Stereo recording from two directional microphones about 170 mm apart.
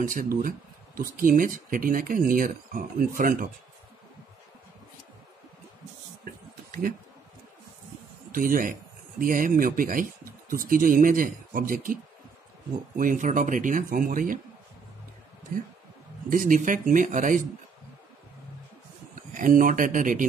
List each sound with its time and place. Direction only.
0.0 s speech: 55° right (ahead or behind)
8.3 s speech: 55° right (ahead or behind)
15.5 s speech: 55° right (ahead or behind)
19.1 s speech: 50° right (ahead or behind)